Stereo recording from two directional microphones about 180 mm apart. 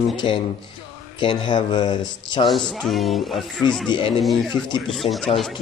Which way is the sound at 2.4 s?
Centre (ahead or behind).